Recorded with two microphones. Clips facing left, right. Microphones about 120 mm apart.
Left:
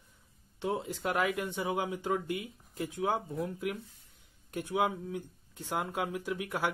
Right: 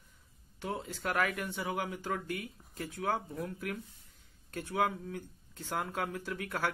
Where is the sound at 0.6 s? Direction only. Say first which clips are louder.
Left 4 dB; 20° left (ahead or behind).